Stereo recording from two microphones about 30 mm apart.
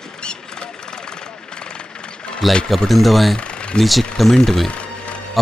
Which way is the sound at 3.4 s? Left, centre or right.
Left.